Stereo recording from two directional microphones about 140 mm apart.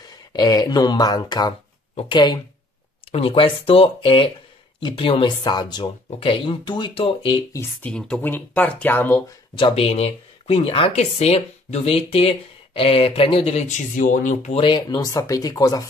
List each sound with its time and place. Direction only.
0.1 s speech: 30° left (ahead or behind)
6.0 s speech: 45° left (ahead or behind)
7.8 s speech: 5° left (ahead or behind)
9.6 s speech: 40° left (ahead or behind); by 14.6 s 60° left (ahead or behind)
14.6 s speech: 35° left (ahead or behind)